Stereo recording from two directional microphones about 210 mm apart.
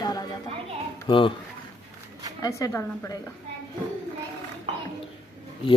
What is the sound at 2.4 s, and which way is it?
Speech, 15° left (ahead or behind).